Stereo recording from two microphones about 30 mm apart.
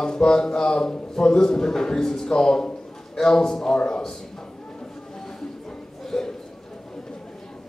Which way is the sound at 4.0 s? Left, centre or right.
Centre.